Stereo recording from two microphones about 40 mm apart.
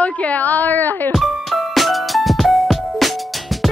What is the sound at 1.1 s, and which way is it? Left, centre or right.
Music, centre.